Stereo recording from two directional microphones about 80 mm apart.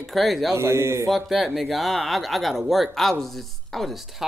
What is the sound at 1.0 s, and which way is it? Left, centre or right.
Speech, centre.